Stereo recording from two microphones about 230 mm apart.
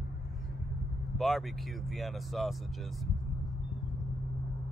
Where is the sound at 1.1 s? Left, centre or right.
Centre.